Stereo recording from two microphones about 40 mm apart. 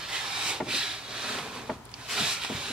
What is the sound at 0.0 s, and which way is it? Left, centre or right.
Vehicle, centre.